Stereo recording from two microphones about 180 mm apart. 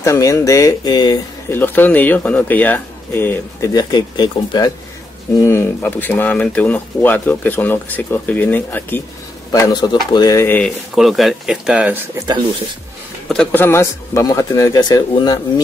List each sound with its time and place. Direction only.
0.0 s speech: 15° left (ahead or behind)
1.5 s speech: 10° left (ahead or behind)
9.5 s speech: 20° left (ahead or behind)
11.0 s speech: centre (ahead or behind)
13.3 s speech: 5° left (ahead or behind); by 15.6 s 20° left (ahead or behind)